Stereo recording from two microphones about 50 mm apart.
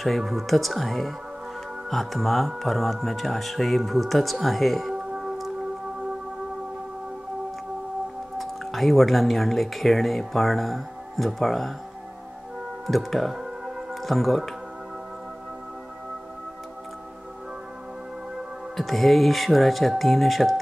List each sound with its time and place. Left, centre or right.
0.0 s speech: centre
4.9 s music: centre
8.4 s speech: centre
12.8 s speech: centre
18.8 s speech: centre